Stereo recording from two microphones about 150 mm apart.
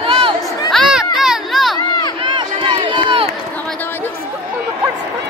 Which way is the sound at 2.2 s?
35° right (ahead or behind).